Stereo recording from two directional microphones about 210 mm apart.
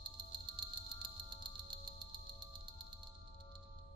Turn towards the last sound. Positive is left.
turn(degrees=-20)  # may be behind; listen again after turning